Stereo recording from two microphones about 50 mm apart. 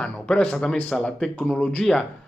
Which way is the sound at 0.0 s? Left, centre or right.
Left.